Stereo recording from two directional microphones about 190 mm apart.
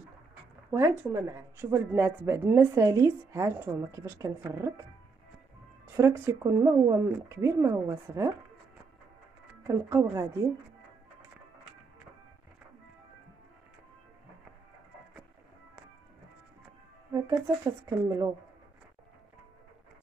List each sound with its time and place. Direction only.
0.7 s speech: 15° right (ahead or behind)
5.9 s speech: 15° right (ahead or behind)
9.6 s speech: 15° right (ahead or behind)
17.8 s speech: 20° right (ahead or behind)